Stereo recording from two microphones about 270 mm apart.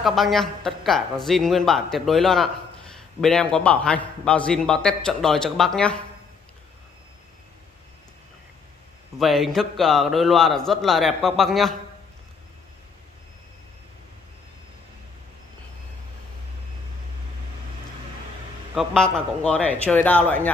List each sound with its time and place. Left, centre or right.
0.0 s a man's voice: centre
9.2 s a man's voice: centre
18.8 s a man's voice: centre